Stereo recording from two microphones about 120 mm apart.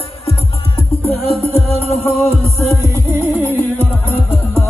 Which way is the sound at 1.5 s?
60° left (ahead or behind).